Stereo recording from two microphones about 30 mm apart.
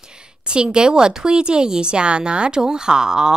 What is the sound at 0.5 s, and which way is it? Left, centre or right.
Speech, right.